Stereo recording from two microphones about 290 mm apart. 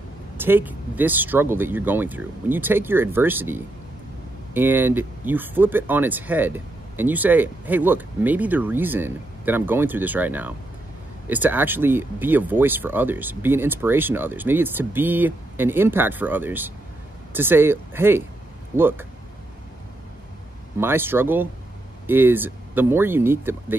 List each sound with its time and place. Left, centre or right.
0.4 s speech: centre
20.8 s speech: centre